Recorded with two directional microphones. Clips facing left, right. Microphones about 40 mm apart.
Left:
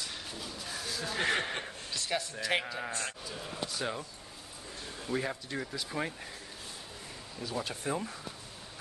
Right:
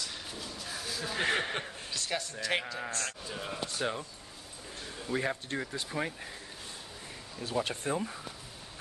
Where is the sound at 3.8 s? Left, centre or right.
Centre.